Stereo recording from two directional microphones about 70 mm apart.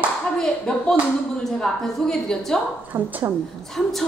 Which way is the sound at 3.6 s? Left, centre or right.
Centre.